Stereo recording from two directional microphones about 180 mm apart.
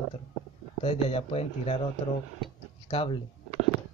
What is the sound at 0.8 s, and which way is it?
Speech, 30° left (ahead or behind).